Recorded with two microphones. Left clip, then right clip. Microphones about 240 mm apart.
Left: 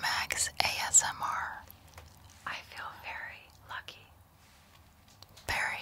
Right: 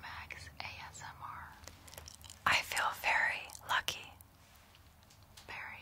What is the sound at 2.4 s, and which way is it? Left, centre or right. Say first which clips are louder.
Whispering: right 9 dB; right.